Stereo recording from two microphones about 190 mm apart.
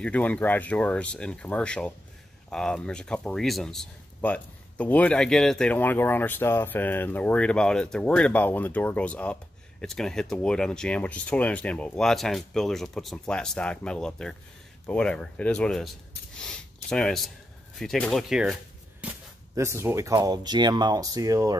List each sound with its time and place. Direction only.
0.0 s speech: 5° left (ahead or behind); by 21.5 s 20° right (ahead or behind)